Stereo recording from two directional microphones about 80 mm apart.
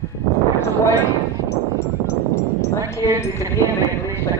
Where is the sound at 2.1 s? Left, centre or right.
Left.